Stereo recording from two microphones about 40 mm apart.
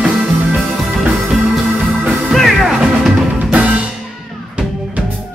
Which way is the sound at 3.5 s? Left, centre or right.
Right.